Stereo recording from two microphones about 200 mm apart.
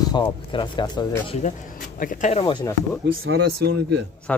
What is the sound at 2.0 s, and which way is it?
Speech, 40° left (ahead or behind).